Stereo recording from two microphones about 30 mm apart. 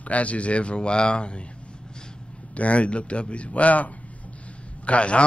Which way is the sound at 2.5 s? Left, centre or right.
Left.